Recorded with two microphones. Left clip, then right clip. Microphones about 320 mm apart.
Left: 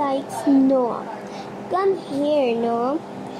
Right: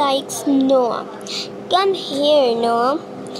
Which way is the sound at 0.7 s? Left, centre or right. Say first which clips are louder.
Right 4 dB; right.